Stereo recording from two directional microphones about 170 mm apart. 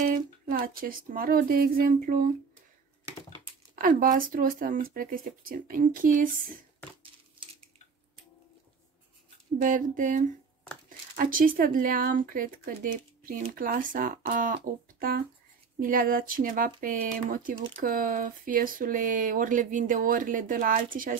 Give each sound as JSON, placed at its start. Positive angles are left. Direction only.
{"t": 0.0, "sound": "speech", "side_deg": -50}
{"t": 3.7, "sound": "speech", "side_deg": -55}
{"t": 9.6, "sound": "speech", "side_deg": -50}
{"t": 14.5, "sound": "music", "side_deg": -55}
{"t": 15.8, "sound": "speech", "side_deg": -55}